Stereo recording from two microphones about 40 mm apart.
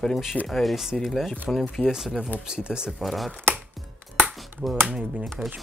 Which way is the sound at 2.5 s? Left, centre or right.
Right.